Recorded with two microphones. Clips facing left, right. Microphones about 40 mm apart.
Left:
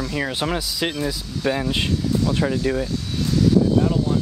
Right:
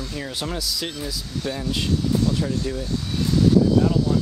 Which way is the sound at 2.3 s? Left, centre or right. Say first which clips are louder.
Left 3 dB; left.